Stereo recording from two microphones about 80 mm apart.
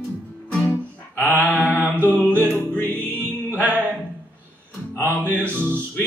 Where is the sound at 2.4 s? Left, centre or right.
Left.